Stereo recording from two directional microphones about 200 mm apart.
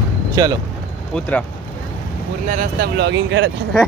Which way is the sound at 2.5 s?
45° right (ahead or behind).